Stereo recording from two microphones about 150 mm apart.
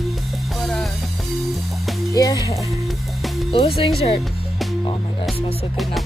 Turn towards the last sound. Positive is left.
turn(degrees=40)  # may be behind; listen again after turning